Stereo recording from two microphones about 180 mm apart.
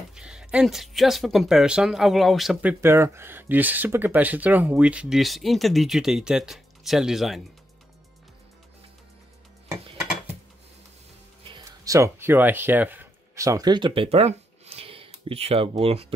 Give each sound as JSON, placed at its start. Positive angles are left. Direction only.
{"t": 0.1, "sound": "speech", "side_deg": -5}
{"t": 11.4, "sound": "speech", "side_deg": -20}